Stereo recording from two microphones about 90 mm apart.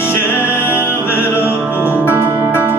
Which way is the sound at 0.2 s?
25° left (ahead or behind).